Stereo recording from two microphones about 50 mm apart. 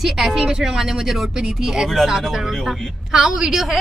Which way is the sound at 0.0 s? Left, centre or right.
Centre.